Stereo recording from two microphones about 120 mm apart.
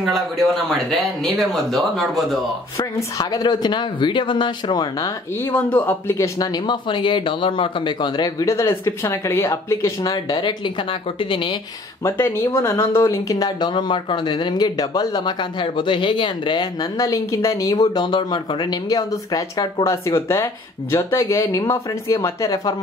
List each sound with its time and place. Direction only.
0.0 s speech: 5° left (ahead or behind)
2.8 s speech: 35° left (ahead or behind)
5.0 s speech: 20° left (ahead or behind)
6.5 s speech: 40° left (ahead or behind)
12.0 s speech: 25° left (ahead or behind); by 16.6 s 40° left (ahead or behind)
17.0 s speech: 25° left (ahead or behind)